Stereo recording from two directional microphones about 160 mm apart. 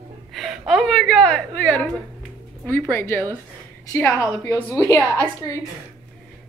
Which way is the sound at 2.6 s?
10° left (ahead or behind).